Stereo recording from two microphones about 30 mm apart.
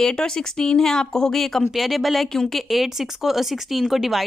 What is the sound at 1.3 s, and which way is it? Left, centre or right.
Speech, centre.